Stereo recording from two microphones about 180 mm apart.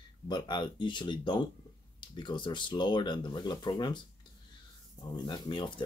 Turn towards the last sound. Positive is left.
turn(degrees=25)  # may be behind; listen again after turning